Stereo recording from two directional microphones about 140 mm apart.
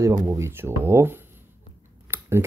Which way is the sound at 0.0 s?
25° right (ahead or behind).